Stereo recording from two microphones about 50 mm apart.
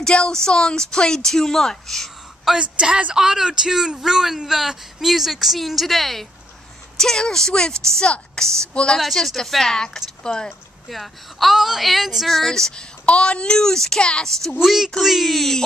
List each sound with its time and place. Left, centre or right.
0.0 s speech: centre
2.6 s a woman's voice: right
3.2 s a woman's voice: centre
9.0 s speech: centre
10.9 s speech: centre
12.3 s speech: centre
13.0 s speech: left
14.6 s speech: centre